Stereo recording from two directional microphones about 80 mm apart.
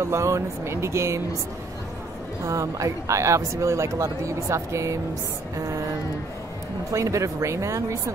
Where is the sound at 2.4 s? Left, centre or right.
Right.